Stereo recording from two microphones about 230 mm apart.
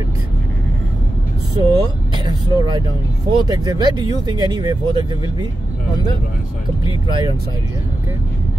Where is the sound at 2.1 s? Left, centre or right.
Centre.